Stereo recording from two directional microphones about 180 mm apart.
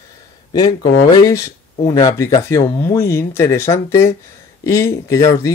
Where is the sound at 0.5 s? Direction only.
20° left (ahead or behind).